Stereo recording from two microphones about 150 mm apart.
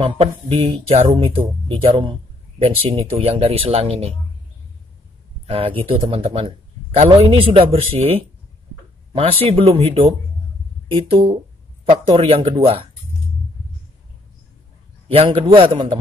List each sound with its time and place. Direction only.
0.0 s speech: 40° right (ahead or behind)
5.5 s speech: 35° right (ahead or behind)
15.0 s speech: 40° right (ahead or behind)